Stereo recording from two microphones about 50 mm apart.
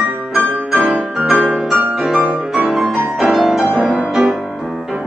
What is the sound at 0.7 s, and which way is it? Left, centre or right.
Music, centre.